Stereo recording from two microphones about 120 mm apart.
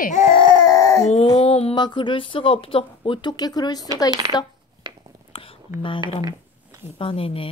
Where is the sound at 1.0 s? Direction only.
65° left (ahead or behind).